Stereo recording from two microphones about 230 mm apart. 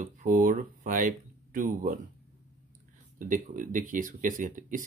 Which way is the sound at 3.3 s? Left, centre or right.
Right.